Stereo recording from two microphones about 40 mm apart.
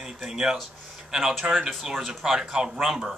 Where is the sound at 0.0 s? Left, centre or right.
Centre.